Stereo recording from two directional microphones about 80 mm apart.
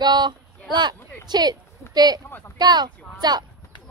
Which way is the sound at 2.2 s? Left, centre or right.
Left.